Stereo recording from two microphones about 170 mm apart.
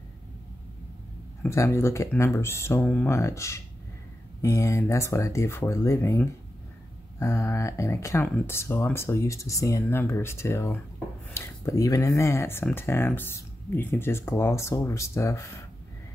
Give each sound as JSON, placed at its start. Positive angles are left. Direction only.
{"t": 1.4, "sound": "speech", "side_deg": 15}